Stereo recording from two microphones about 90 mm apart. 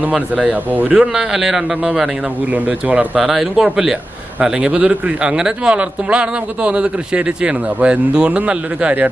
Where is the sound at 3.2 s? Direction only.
5° right (ahead or behind).